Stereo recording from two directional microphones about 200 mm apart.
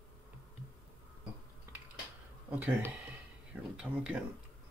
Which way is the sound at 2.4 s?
10° right (ahead or behind).